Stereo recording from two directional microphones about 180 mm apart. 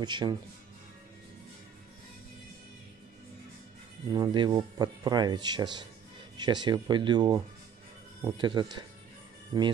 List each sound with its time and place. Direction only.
0.0 s speech: 25° right (ahead or behind)
4.1 s speech: 25° right (ahead or behind)